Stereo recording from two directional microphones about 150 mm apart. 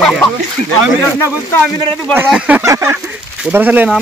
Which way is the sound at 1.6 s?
10° left (ahead or behind).